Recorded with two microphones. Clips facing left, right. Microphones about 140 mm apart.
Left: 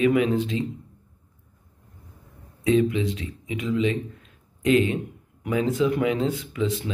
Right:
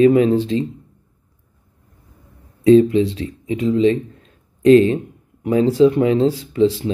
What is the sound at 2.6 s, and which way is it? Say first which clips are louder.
Speech: right 10 dB; 35° right (ahead or behind).